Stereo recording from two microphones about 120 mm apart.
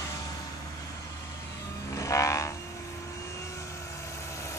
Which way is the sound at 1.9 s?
25° left (ahead or behind).